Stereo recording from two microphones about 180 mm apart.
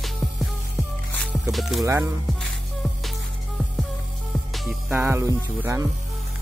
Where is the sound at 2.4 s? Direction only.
Centre (ahead or behind).